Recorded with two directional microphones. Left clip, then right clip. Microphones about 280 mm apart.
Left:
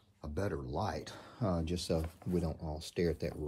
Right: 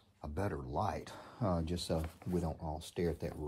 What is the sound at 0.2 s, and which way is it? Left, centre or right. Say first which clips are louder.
Speech: left 1 dB; centre.